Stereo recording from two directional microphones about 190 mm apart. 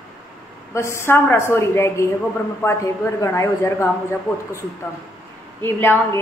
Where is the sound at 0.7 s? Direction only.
15° left (ahead or behind).